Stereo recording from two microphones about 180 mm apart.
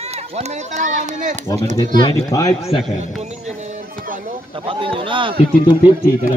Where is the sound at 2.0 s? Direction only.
20° left (ahead or behind).